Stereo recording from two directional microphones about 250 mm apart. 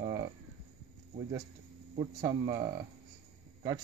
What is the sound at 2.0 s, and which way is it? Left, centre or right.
Speech, centre.